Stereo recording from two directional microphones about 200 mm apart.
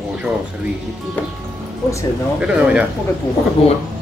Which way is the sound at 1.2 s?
10° left (ahead or behind).